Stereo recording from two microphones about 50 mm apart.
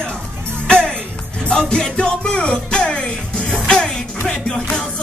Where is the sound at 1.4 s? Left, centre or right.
Centre.